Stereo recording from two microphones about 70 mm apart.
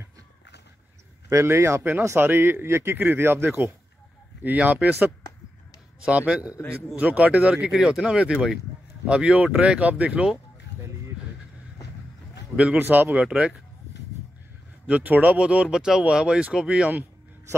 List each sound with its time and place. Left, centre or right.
1.3 s speech: right; by 4.9 s centre
5.9 s speech: centre
12.5 s speech: centre
12.8 s speech: right
13.1 s speech: centre
14.9 s speech: right